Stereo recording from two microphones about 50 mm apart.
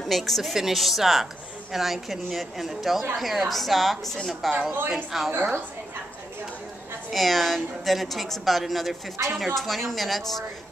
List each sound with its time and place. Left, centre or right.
0.0 s a woman's voice: centre
5.3 s a woman's voice: right
7.1 s a woman's voice: centre